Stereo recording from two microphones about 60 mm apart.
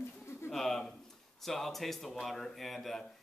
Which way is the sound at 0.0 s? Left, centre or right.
Left.